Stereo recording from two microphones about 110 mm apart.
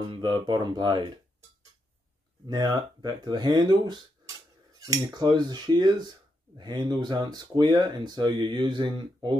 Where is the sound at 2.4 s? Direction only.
40° right (ahead or behind).